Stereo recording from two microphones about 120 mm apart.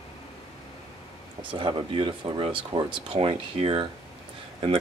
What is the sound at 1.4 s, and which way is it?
Speech, 45° right (ahead or behind).